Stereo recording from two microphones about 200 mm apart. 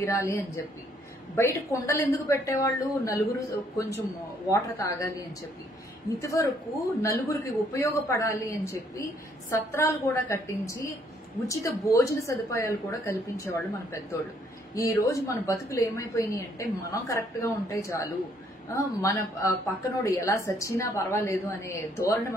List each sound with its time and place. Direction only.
0.0 s a woman's voice: 15° left (ahead or behind)